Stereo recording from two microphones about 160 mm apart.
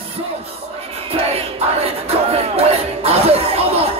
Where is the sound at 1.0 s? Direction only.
40° right (ahead or behind).